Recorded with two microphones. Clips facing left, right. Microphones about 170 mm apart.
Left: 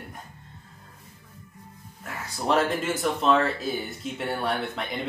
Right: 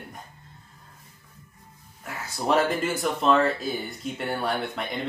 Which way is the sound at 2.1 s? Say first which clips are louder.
Right 1 dB; centre (ahead or behind).